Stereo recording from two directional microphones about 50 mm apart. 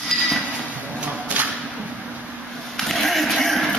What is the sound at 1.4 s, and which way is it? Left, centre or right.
Whip, right.